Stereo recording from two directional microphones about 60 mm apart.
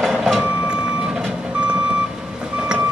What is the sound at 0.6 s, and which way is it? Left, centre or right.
Vehicle, centre.